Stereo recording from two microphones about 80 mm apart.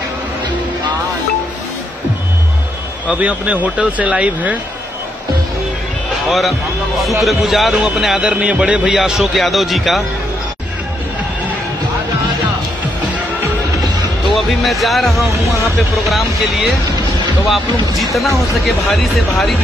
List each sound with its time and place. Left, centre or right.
3.1 s speech: centre
6.2 s a man's voice: centre
14.2 s a man's voice: centre
18.7 s a man's voice: centre